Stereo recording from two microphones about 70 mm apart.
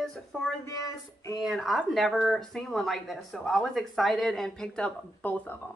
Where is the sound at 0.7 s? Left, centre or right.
Left.